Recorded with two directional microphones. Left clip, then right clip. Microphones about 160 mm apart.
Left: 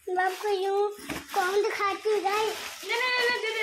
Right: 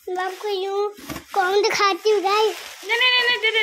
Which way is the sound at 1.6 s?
90° right.